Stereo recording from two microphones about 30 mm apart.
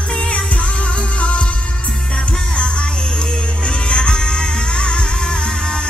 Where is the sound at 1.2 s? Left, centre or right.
Left.